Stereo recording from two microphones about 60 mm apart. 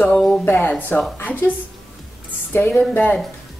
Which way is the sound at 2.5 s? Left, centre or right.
Left.